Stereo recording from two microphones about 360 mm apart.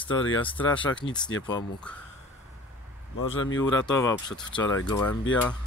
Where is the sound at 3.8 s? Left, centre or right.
Centre.